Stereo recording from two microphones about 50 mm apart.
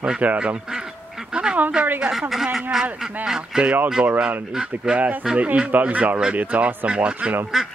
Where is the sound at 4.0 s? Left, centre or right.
Right.